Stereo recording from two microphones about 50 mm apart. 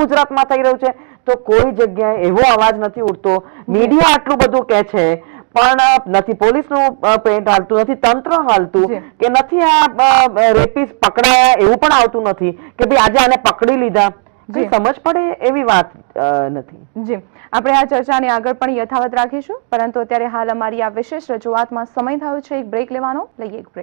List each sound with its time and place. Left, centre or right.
0.4 s speech: centre